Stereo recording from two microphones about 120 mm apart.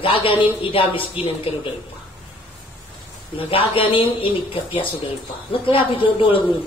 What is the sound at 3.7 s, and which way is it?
Speech, 50° left (ahead or behind).